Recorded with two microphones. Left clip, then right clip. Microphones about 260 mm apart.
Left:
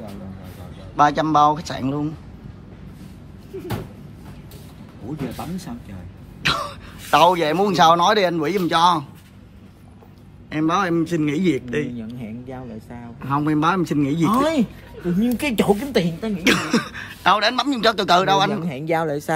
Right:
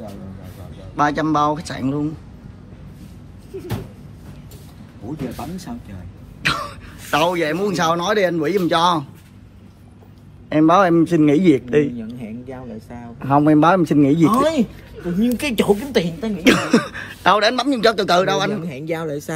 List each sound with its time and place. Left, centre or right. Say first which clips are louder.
0.9 s speech: left 2 dB; centre
5.4 s speech: right 1 dB; centre
10.5 s a man's voice: right 7 dB; centre
18.7 s speech: left 3 dB; left